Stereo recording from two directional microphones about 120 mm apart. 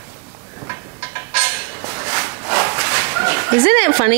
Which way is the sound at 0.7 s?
20° right (ahead or behind).